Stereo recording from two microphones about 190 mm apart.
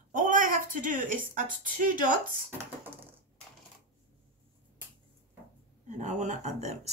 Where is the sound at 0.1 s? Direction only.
45° right (ahead or behind).